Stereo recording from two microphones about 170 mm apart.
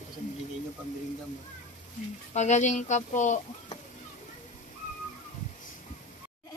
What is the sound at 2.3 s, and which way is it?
Speech, 45° left (ahead or behind).